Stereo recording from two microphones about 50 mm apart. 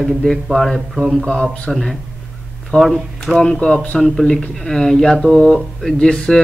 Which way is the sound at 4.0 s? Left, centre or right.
Centre.